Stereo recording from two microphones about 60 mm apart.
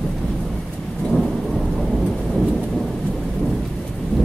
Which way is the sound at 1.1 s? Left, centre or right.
Centre.